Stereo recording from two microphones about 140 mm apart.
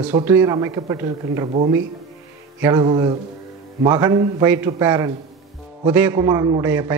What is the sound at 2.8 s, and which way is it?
Speech, 35° right (ahead or behind).